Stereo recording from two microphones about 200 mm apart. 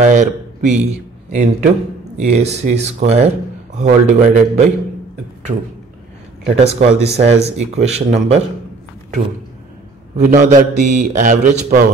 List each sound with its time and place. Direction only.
0.0 s speech: 35° right (ahead or behind)
6.4 s speech: 30° right (ahead or behind)
10.1 s speech: 35° right (ahead or behind)